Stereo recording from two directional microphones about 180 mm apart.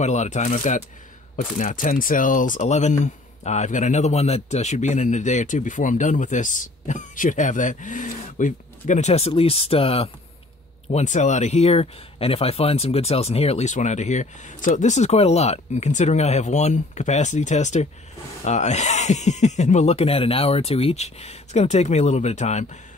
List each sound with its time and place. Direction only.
0.0 s speech: 40° left (ahead or behind)